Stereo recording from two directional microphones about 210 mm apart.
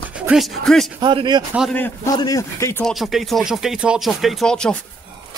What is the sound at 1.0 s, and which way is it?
Speech, 20° right (ahead or behind).